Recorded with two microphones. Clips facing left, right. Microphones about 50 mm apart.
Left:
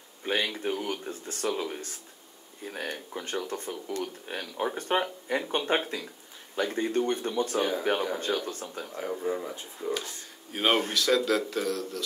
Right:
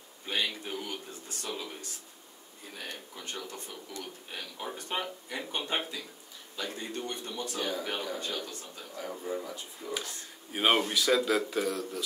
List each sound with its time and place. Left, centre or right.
0.2 s speech: left
9.2 s speech: left
10.5 s speech: centre